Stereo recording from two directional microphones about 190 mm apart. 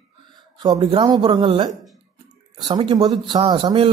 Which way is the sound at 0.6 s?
25° right (ahead or behind).